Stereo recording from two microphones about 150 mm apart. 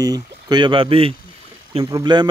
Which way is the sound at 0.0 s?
25° right (ahead or behind).